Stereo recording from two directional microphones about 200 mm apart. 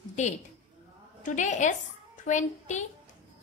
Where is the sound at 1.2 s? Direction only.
40° left (ahead or behind).